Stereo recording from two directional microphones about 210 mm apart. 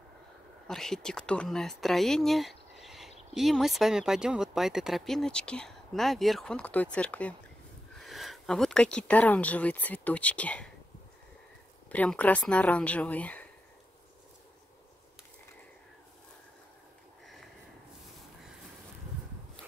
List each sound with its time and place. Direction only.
0.7 s speech: centre (ahead or behind)
11.9 s speech: 5° left (ahead or behind)